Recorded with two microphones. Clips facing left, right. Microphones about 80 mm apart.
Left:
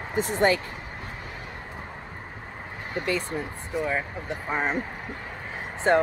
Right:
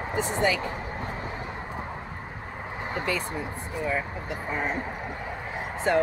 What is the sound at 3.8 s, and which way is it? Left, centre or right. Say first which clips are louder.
Speech: left 1 dB; centre.